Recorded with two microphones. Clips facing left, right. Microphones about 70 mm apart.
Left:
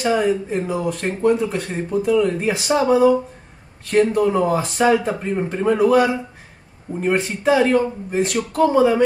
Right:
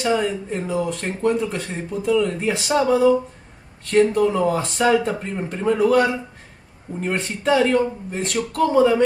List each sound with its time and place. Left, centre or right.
0.0 s speech: centre
5.3 s a man's voice: left
5.6 s a man's voice: centre
7.2 s speech: centre